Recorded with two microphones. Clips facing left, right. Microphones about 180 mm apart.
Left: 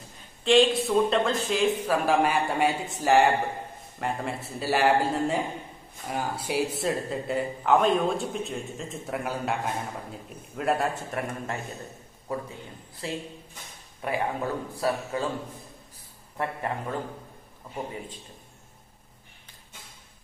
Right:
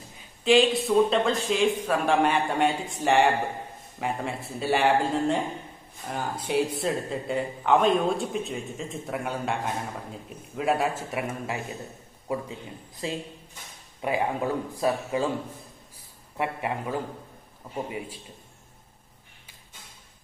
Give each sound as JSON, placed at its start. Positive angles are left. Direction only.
{"t": 0.4, "sound": "a man's voice", "side_deg": 0}